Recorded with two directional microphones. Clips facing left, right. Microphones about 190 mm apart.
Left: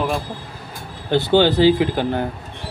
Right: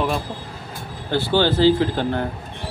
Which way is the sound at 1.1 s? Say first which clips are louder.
Left 4 dB; 20° left (ahead or behind).